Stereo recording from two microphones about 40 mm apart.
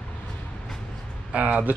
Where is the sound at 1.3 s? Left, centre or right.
Right.